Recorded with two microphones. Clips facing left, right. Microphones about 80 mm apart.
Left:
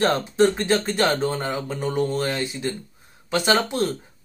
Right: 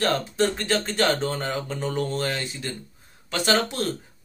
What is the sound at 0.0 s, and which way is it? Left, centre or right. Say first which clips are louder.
Speech: left 4 dB; left.